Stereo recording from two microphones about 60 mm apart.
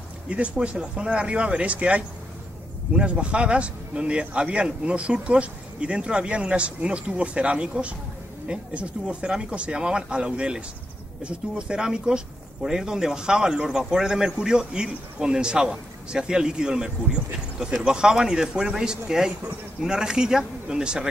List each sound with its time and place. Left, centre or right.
0.6 s a man's voice: centre